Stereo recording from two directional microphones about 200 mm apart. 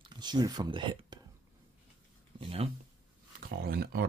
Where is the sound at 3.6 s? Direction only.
50° right (ahead or behind).